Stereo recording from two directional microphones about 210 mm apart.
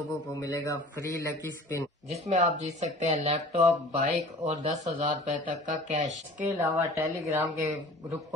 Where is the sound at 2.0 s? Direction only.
35° right (ahead or behind).